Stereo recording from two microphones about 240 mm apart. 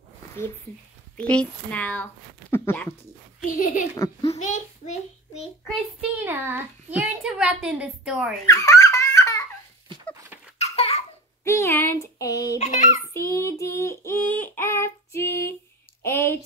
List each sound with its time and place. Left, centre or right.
1.1 s a child's voice: centre
3.4 s a child's voice: left
3.9 s a child's voice: centre
5.6 s a child's voice: centre
8.5 s giggle: centre
10.6 s babbling: left
11.4 s child singing: centre
12.5 s a child's voice: left
13.0 s child singing: centre
16.0 s a woman's voice: centre